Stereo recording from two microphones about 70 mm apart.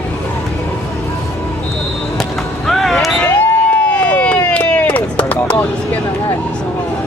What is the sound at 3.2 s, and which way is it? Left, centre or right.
Crowd, left.